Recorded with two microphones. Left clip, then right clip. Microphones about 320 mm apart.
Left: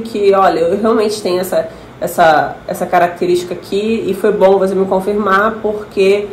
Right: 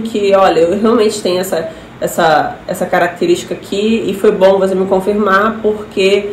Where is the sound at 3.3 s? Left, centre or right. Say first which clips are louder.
Even; centre.